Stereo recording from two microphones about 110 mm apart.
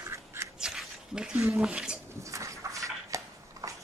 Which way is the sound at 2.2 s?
30° right (ahead or behind).